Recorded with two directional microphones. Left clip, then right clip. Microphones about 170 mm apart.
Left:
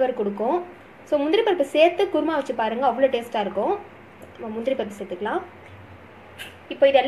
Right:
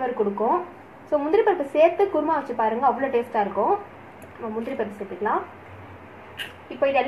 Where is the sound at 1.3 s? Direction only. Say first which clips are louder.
Right 1 dB; 55° left (ahead or behind).